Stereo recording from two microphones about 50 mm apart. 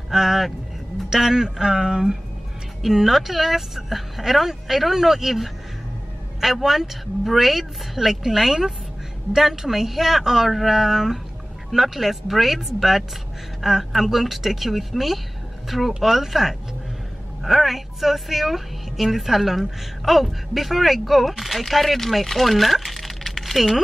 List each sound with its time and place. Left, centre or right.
0.1 s a woman's voice: centre